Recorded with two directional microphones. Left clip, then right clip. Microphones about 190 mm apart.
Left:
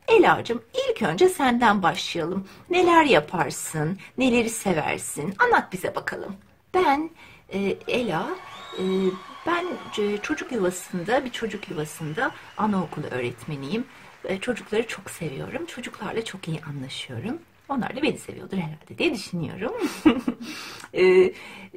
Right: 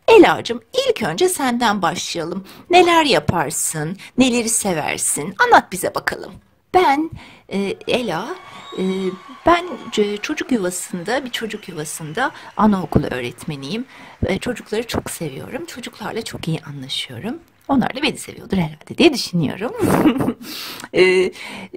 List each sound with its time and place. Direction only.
0.0 s a woman's voice: 45° right (ahead or behind)
9.4 s speech: 50° right (ahead or behind)